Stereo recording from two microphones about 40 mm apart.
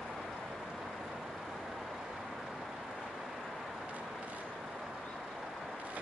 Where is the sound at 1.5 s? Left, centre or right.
Centre.